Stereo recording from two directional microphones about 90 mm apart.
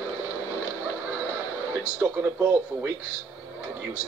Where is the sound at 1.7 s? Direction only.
25° right (ahead or behind).